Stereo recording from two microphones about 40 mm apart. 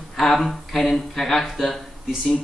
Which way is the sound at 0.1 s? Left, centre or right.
Centre.